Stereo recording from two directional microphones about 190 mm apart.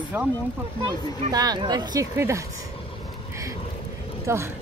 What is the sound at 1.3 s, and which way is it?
Speech, 20° right (ahead or behind).